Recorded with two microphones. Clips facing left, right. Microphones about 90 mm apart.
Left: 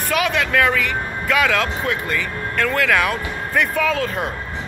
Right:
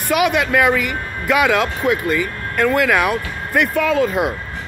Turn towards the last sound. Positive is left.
turn(degrees=-5)  # may be behind; listen again after turning